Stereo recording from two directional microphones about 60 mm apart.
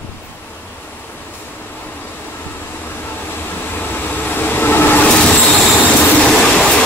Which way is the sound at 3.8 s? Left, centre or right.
Left.